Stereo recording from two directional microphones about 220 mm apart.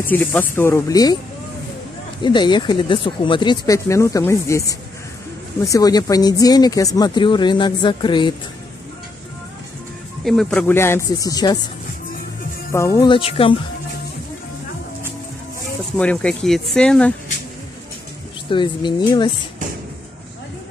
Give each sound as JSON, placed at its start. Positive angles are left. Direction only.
{"t": 0.0, "sound": "speech", "side_deg": 5}
{"t": 2.2, "sound": "speech", "side_deg": 20}
{"t": 10.2, "sound": "speech", "side_deg": 0}
{"t": 12.7, "sound": "speech", "side_deg": 15}
{"t": 16.0, "sound": "speech", "side_deg": 5}
{"t": 18.5, "sound": "speech", "side_deg": 20}